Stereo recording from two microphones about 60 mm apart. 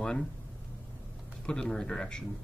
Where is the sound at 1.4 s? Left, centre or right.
Centre.